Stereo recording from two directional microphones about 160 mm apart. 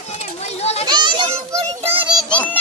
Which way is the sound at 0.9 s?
30° right (ahead or behind).